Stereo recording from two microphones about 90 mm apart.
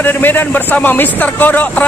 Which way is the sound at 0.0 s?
20° left (ahead or behind).